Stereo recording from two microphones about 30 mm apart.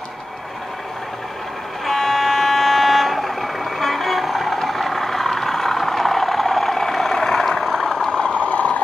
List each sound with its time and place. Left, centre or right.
1.9 s vehicle: centre
8.1 s vehicle: left
8.4 s a sound: left